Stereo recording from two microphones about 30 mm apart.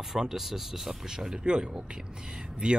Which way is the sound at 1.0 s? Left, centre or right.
Centre.